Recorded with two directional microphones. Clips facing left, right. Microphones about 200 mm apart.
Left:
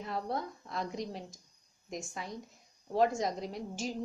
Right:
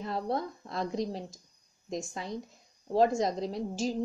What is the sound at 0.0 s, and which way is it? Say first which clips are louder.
Speech: right 4 dB; 30° right (ahead or behind).